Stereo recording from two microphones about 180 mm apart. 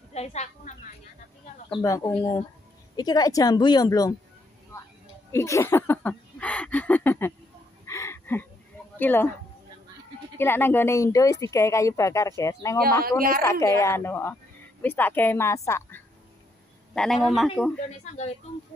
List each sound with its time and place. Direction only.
0.1 s a woman's voice: 40° left (ahead or behind)
1.7 s a woman's voice: 20° left (ahead or behind)
5.3 s a sound: 15° left (ahead or behind)
8.9 s speech: 10° left (ahead or behind)
10.3 s speech: 10° left (ahead or behind)
16.9 s speech: centre (ahead or behind)